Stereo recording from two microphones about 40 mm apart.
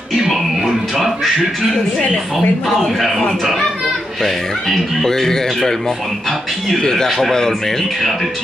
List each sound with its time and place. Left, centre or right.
0.6 s music: centre
2.3 s speech: centre
4.2 s speech: centre